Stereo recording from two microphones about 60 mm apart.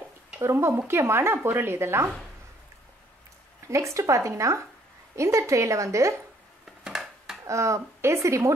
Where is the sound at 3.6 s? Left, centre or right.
Right.